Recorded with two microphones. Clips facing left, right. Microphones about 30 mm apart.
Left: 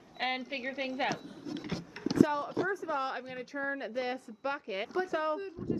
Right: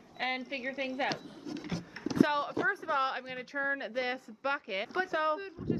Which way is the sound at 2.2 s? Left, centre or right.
Right.